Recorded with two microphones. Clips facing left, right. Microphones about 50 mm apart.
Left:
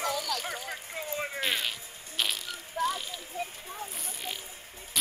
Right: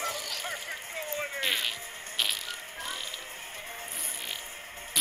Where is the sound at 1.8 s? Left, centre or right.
Right.